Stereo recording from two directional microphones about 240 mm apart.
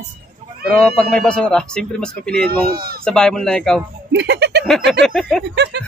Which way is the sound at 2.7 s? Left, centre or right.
Right.